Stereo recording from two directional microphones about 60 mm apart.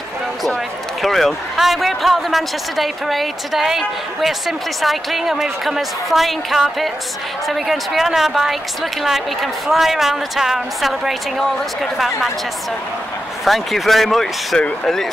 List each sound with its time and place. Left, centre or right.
1.0 s a man's voice: centre
13.5 s a man's voice: centre